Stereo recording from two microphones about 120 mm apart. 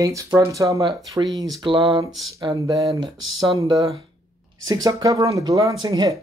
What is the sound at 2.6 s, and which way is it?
Speech, 30° right (ahead or behind).